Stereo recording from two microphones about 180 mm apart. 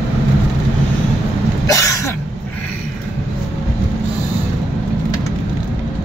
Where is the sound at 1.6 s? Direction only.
15° left (ahead or behind).